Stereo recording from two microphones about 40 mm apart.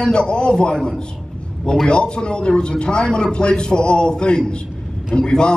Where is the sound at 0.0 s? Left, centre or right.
Left.